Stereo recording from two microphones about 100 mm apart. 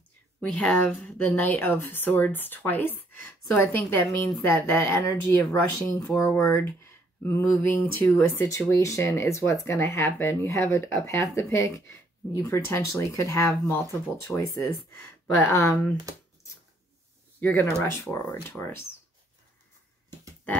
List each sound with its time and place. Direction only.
0.6 s speech: 15° left (ahead or behind)
6.0 s speech: 5° left (ahead or behind)
6.6 s speech: 20° left (ahead or behind)
14.9 s speech: 20° left (ahead or behind)
17.4 s speech: 20° left (ahead or behind)